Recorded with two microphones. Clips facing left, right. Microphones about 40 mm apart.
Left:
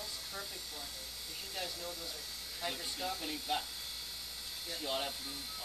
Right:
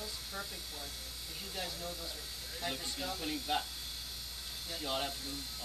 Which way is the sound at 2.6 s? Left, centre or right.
Centre.